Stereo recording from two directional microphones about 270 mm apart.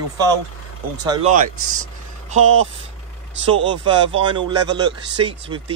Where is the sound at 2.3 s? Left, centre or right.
Right.